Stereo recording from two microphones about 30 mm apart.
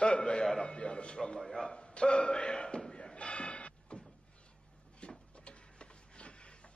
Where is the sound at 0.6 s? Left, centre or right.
Left.